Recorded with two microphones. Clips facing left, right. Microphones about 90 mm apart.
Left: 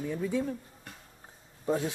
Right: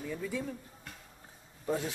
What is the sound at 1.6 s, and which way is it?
Speech, 20° left (ahead or behind).